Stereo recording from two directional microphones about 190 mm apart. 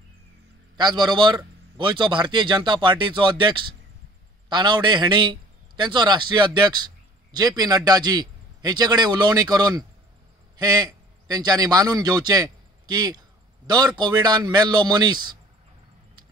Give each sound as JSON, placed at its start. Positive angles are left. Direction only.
{"t": 0.7, "sound": "a man's voice", "side_deg": -25}